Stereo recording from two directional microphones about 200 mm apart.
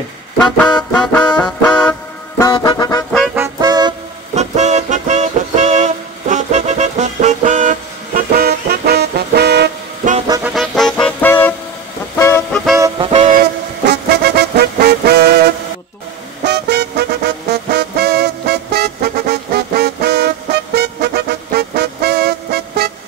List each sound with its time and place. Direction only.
0.4 s music: 5° left (ahead or behind)
1.6 s vehicle: 5° left (ahead or behind)
2.5 s music: 20° left (ahead or behind)
3.3 s music: 15° right (ahead or behind)
4.4 s music: 35° right (ahead or behind); by 9.7 s 55° right (ahead or behind)
10.4 s music: centre (ahead or behind)
12.7 s music: 15° right (ahead or behind)
13.1 s train: 30° right (ahead or behind)
13.4 s music: 50° right (ahead or behind)